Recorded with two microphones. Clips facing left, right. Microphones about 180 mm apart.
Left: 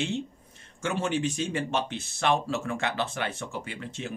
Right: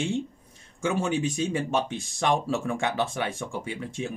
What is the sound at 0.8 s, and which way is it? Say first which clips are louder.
Speech: right 2 dB; 10° right (ahead or behind).